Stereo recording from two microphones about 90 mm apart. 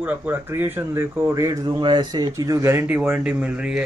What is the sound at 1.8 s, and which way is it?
Speech, 60° right (ahead or behind).